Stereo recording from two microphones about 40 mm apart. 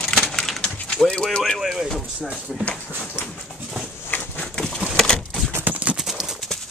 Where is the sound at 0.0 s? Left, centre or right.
Centre.